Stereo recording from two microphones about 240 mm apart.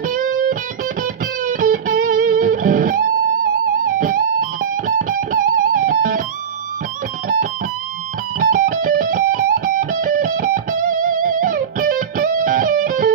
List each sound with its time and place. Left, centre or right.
0.1 s music: right
8.4 s music: right